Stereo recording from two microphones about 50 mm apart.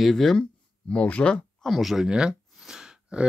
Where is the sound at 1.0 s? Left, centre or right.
Left.